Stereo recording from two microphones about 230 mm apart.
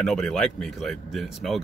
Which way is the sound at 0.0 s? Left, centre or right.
Centre.